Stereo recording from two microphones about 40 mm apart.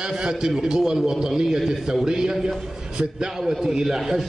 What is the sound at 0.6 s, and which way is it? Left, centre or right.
A man's voice, centre.